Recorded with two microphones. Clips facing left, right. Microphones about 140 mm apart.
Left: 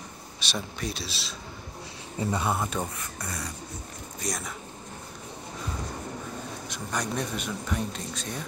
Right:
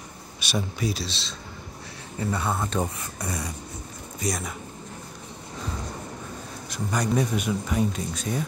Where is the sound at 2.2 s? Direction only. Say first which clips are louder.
Even; 15° left (ahead or behind).